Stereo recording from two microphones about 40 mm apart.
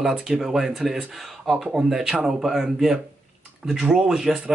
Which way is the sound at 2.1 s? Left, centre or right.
Right.